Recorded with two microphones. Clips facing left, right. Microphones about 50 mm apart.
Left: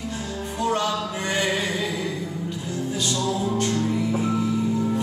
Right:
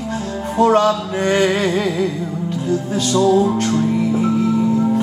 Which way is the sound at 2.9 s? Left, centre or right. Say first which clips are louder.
Right 12 dB; right.